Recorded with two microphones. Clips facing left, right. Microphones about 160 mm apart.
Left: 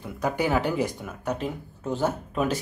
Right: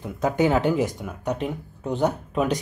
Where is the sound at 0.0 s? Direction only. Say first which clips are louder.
Right 5 dB; 20° right (ahead or behind).